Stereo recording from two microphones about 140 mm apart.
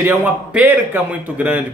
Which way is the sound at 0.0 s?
15° right (ahead or behind).